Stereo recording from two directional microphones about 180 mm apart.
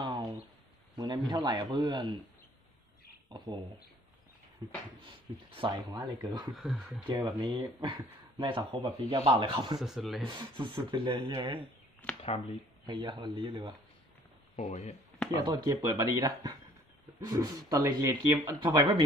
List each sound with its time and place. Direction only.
0.0 s a sound: 20° right (ahead or behind)
0.9 s speech: 25° right (ahead or behind)
3.3 s speech: 25° right (ahead or behind)
4.6 s a sound: 30° right (ahead or behind)
5.6 s speech: 25° right (ahead or behind)
6.5 s speech: centre (ahead or behind)
7.1 s speech: 25° right (ahead or behind)
9.8 s speech: centre (ahead or behind)
10.2 s speech: 25° right (ahead or behind)
12.8 s speech: 25° right (ahead or behind)
14.5 s speech: 40° left (ahead or behind)
15.3 s speech: 20° right (ahead or behind)